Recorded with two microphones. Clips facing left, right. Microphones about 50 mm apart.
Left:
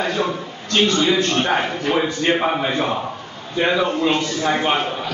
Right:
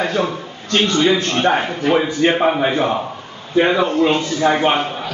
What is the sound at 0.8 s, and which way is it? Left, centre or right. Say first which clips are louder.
Speech: right 2 dB; centre.